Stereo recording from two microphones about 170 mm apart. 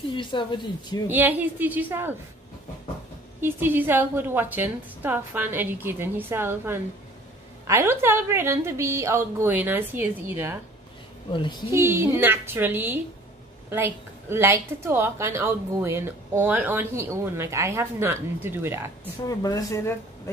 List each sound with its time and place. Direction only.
0.1 s speech: 30° left (ahead or behind)
1.0 s a woman's voice: 10° right (ahead or behind)
3.3 s a woman's voice: 10° right (ahead or behind)
11.7 s a woman's voice: 15° right (ahead or behind)
19.2 s speech: 20° left (ahead or behind)